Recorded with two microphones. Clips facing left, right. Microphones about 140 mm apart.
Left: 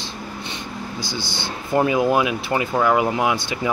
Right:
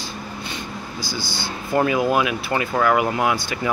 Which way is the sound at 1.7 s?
20° left (ahead or behind).